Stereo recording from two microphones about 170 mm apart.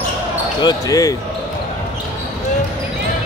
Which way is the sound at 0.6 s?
20° left (ahead or behind).